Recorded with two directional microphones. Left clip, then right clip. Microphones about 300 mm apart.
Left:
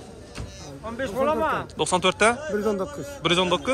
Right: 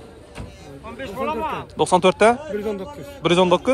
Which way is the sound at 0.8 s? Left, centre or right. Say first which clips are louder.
Left 2 dB; left.